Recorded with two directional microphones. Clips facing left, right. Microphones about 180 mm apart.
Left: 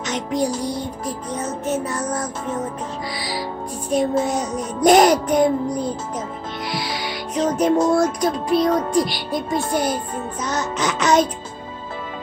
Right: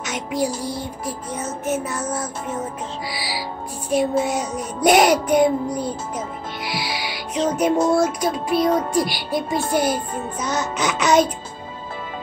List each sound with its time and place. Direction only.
0.0 s music: 5° right (ahead or behind)
0.6 s music: 15° left (ahead or behind)
1.7 s music: 5° right (ahead or behind)
4.8 s a child's voice: 5° right (ahead or behind)
7.4 s music: 5° right (ahead or behind)